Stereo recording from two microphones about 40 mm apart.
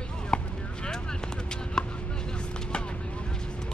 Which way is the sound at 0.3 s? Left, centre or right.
Left.